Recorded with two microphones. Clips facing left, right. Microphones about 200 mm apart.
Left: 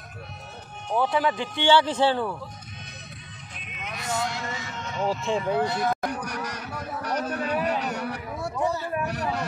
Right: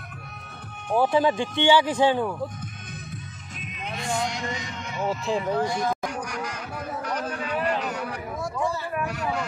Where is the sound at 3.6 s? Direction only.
35° right (ahead or behind).